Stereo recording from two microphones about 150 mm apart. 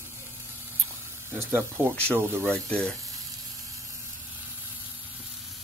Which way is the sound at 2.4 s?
5° left (ahead or behind).